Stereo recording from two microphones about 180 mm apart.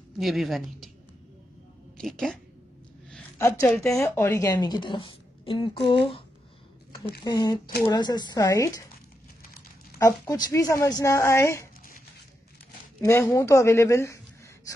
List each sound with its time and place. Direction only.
0.2 s a woman's voice: centre (ahead or behind)
2.0 s speech: 5° left (ahead or behind)
3.3 s a woman's voice: 15° left (ahead or behind)
7.2 s a woman's voice: 25° left (ahead or behind)
9.9 s a woman's voice: 20° left (ahead or behind)
13.0 s a woman's voice: 15° left (ahead or behind)